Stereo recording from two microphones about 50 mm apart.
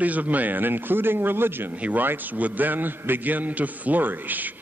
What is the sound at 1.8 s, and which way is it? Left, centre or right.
A man's voice, right.